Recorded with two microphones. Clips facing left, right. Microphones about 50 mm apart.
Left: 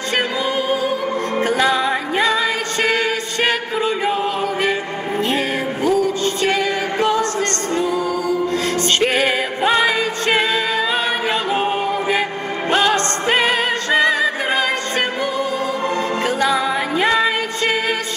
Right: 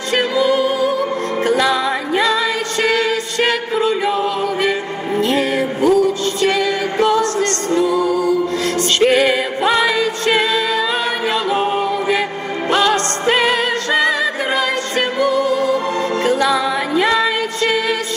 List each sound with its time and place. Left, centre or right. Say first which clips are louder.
0.1 s music: right 5 dB; left
2.8 s chant: right 2 dB; left
5.2 s music: right 4 dB; left